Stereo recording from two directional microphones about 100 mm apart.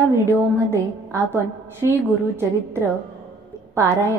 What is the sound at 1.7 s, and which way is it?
A woman's voice, 25° right (ahead or behind).